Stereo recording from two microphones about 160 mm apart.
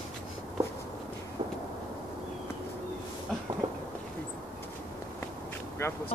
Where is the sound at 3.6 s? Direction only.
30° right (ahead or behind).